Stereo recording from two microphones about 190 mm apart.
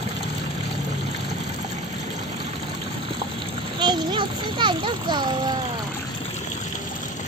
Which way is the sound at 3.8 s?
25° right (ahead or behind).